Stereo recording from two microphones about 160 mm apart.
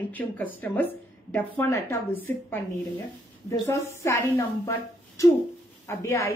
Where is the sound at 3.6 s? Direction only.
15° left (ahead or behind).